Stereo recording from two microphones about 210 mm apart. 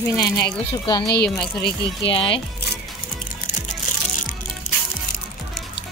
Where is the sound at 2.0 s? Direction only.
25° left (ahead or behind).